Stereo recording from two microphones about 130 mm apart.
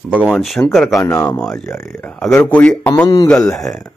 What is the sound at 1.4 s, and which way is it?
Speech, 5° left (ahead or behind).